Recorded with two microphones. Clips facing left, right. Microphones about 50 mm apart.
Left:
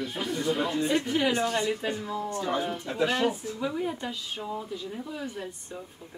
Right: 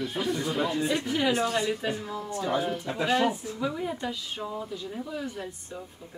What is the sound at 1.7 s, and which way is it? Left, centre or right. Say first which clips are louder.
Speech: even; centre.